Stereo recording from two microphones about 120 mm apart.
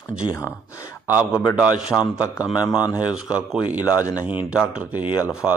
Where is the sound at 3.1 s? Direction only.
10° right (ahead or behind).